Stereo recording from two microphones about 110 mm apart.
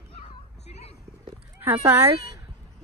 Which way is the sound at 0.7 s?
90° left.